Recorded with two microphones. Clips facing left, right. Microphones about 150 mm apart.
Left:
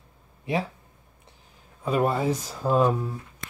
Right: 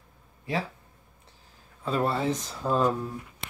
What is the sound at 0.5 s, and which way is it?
Speech, 20° left (ahead or behind).